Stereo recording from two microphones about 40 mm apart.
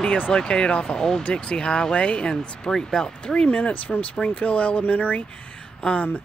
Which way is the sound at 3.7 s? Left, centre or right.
Left.